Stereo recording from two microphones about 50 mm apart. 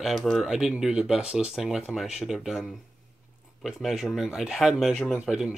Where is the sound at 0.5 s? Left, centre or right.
Centre.